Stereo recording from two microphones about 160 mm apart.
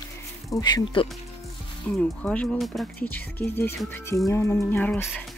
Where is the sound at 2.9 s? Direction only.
10° left (ahead or behind).